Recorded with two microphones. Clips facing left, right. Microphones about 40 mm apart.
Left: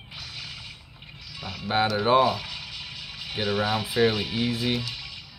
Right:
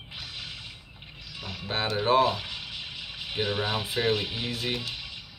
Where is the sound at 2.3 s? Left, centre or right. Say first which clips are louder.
Left 2 dB; centre.